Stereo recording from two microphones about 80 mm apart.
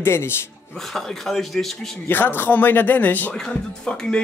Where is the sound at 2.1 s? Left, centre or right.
Left.